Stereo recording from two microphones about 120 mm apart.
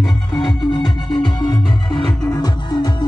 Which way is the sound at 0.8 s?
35° left (ahead or behind).